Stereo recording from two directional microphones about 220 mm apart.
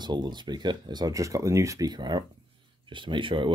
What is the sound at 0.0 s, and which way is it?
Speech, 20° right (ahead or behind).